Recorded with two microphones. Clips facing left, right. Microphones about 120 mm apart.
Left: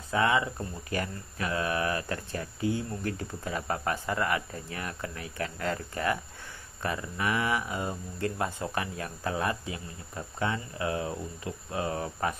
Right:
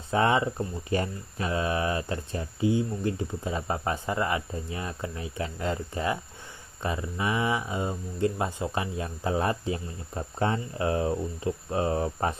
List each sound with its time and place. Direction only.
0.1 s speech: 30° right (ahead or behind)